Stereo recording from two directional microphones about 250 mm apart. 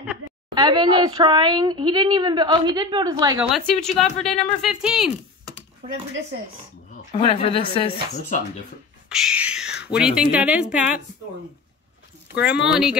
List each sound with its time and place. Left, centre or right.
0.6 s a woman's voice: centre
3.5 s speech: centre
7.2 s speech: left
9.1 s speech: centre
12.6 s speech: centre